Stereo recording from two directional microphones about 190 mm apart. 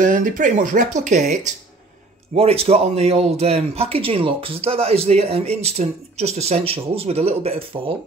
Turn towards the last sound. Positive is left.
turn(degrees=-30)  # may be behind; listen again after turning